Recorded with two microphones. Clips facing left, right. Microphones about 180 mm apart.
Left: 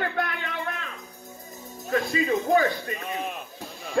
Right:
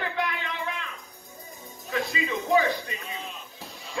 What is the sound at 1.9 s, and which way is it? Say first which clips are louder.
A man's voice: left 5 dB; 45° left (ahead or behind).